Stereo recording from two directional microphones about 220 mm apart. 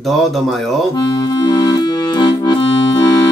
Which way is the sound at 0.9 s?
15° left (ahead or behind).